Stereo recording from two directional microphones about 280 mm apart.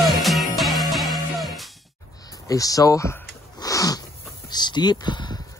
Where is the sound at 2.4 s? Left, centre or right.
Centre.